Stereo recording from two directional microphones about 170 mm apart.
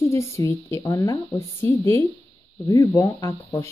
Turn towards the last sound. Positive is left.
turn(degrees=20)  # may be behind; listen again after turning